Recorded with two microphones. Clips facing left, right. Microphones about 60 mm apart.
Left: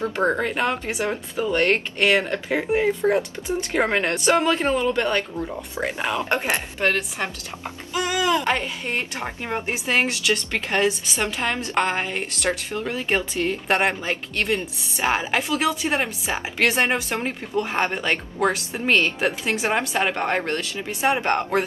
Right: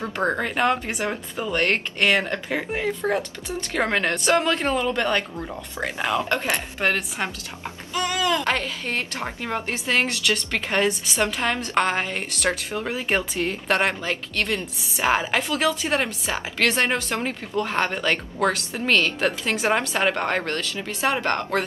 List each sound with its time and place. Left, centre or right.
0.1 s a woman's voice: centre
5.8 s speech: centre
6.8 s a woman's voice: centre
7.9 s speech: centre
10.7 s a woman's voice: centre
13.7 s speech: centre
14.8 s a woman's voice: centre